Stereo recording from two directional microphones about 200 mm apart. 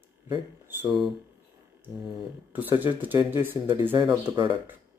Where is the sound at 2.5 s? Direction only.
10° right (ahead or behind).